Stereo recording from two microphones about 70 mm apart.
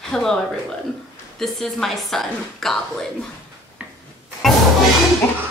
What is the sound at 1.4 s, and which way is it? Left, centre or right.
A woman's voice, centre.